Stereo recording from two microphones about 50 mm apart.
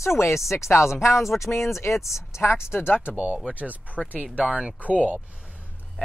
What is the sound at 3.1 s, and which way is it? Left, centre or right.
Speech, right.